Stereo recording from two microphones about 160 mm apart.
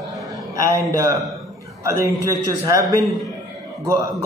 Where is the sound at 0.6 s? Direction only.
20° right (ahead or behind).